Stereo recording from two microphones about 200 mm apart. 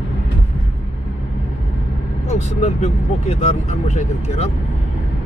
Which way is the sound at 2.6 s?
30° left (ahead or behind).